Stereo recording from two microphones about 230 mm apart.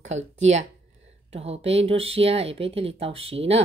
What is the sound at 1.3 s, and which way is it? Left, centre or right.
Speech, right.